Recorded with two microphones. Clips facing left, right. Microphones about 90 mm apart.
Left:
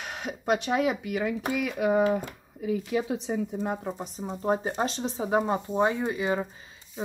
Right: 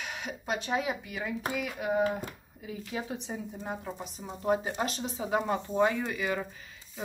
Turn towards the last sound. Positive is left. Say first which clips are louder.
# left 4 dB
turn(degrees=25)  # may be behind; listen again after turning